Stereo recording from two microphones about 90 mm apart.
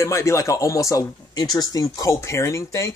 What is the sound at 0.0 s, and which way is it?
Speech, 30° left (ahead or behind).